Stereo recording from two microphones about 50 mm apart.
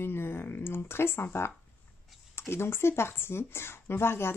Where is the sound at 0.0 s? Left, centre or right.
Left.